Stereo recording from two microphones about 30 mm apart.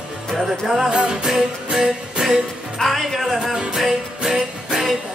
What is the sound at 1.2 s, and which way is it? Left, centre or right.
Music, centre.